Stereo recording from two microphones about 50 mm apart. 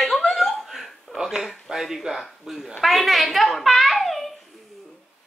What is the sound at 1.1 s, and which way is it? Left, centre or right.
A woman's voice, centre.